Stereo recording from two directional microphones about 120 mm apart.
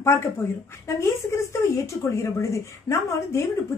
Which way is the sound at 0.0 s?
25° left (ahead or behind).